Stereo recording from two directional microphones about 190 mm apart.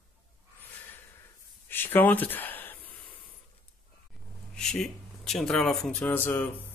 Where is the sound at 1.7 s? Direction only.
10° left (ahead or behind).